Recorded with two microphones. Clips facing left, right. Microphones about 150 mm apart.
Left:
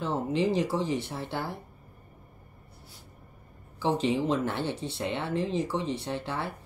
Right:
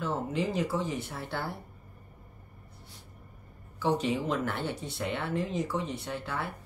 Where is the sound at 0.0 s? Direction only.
25° left (ahead or behind).